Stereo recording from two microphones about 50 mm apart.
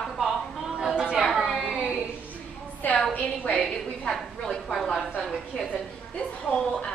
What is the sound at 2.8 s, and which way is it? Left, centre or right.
Speech, left.